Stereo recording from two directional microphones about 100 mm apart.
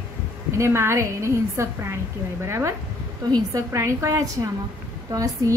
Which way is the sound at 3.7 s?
30° right (ahead or behind).